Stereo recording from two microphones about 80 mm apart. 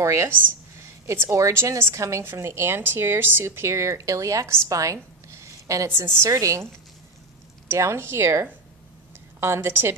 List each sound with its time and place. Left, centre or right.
0.0 s a woman's voice: right